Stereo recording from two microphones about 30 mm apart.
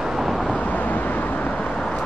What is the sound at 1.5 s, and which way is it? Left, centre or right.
Vehicle, left.